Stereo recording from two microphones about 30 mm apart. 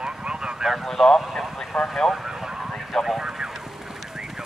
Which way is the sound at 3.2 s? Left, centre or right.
Centre.